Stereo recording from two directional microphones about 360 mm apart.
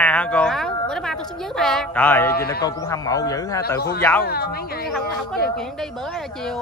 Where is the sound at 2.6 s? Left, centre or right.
Centre.